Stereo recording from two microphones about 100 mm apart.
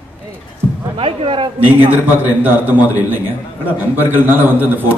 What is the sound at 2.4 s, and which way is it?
Speech, 20° right (ahead or behind).